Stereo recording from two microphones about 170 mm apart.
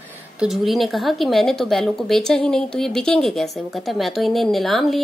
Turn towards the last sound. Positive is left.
turn(degrees=0)  # may be behind; listen again after turning